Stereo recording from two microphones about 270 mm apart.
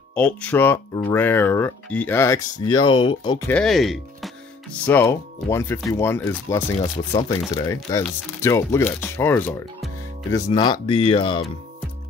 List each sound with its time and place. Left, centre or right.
0.1 s speech: centre